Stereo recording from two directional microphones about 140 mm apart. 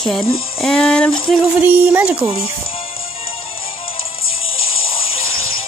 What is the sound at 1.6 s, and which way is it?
Speech, 15° right (ahead or behind).